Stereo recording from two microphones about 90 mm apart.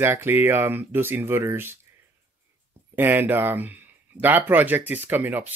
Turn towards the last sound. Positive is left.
turn(degrees=-20)  # may be behind; listen again after turning